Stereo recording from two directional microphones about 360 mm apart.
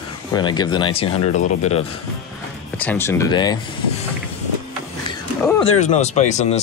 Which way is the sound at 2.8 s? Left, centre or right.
Centre.